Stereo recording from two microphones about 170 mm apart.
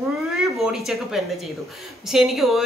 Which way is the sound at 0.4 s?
Centre (ahead or behind).